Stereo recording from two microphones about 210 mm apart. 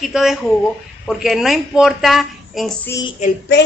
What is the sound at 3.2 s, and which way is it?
Child singing, 35° left (ahead or behind).